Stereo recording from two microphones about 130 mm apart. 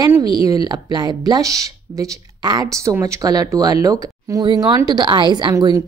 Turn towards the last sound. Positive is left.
turn(degrees=-30)  # may be behind; listen again after turning